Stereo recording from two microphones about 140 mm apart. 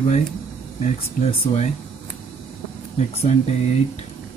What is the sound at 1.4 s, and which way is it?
Speech, 55° left (ahead or behind).